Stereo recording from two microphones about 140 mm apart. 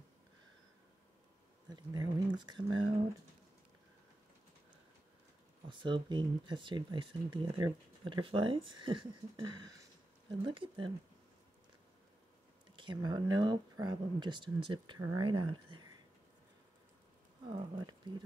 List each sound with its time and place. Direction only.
1.9 s speech: 30° right (ahead or behind)
5.7 s speech: 35° right (ahead or behind)
12.7 s speech: 35° right (ahead or behind)
17.5 s speech: 35° right (ahead or behind)